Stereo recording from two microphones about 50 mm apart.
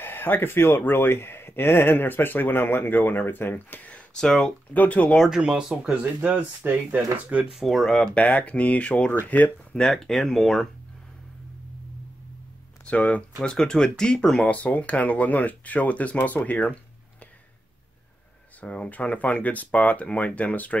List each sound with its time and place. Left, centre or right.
0.0 s speech: left
4.7 s speech: left
5.3 s speech: centre
6.2 s speech: right
7.6 s speech: centre
8.1 s speech: left
9.9 s speech: centre
12.8 s speech: left
13.4 s speech: centre
14.5 s speech: left
18.6 s speech: left